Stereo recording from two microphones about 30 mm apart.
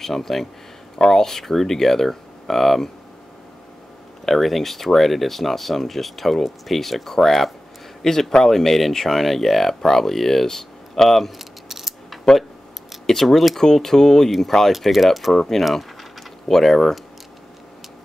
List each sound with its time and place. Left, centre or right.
0.0 s speech: centre
4.3 s speech: centre
11.3 s a sound: centre
13.0 s speech: centre
14.7 s speech: centre
15.3 s speech: left
16.4 s speech: centre